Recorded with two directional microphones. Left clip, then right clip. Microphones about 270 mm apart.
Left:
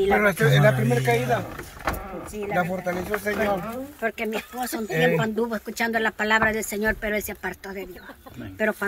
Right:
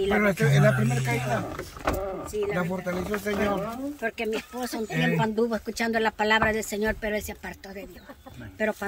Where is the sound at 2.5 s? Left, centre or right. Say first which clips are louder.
Left 4 dB; left.